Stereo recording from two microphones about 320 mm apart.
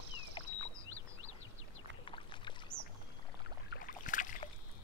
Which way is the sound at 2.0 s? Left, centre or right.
Centre.